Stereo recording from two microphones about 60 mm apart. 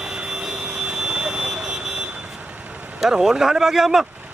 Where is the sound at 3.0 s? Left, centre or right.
Centre.